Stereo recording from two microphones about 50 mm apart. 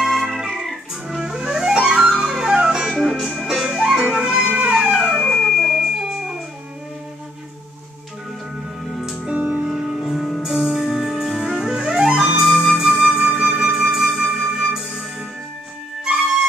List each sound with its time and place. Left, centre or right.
0.0 s organ: centre
0.6 s music: centre
3.0 s music: centre; by 4.7 s right
4.7 s music: centre
5.1 s music: centre
5.8 s music: centre
9.3 s music: right
9.9 s music: centre
12.4 s music: centre